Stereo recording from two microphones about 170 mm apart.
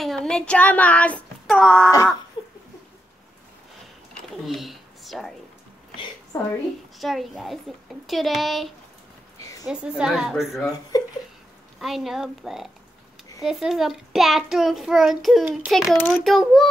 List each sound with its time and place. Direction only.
0.0 s child singing: centre (ahead or behind)
2.4 s laughter: 25° left (ahead or behind)
4.1 s a sound: centre (ahead or behind)
5.9 s a sound: 25° left (ahead or behind)
7.0 s a child's voice: centre (ahead or behind)
9.4 s a sound: 20° left (ahead or behind)
9.7 s a child's voice: 5° right (ahead or behind)
10.9 s speech: 20° left (ahead or behind)
11.8 s a child's voice: centre (ahead or behind)